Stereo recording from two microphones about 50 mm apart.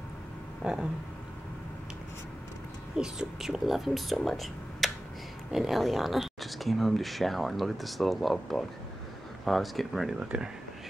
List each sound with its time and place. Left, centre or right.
0.6 s a sound: centre
3.0 s speech: centre
10.2 s speech: centre